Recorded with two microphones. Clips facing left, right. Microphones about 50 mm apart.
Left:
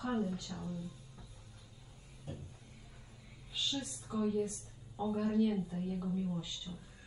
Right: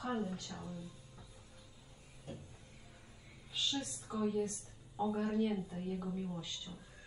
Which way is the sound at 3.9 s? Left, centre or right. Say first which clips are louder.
Left 2 dB; right.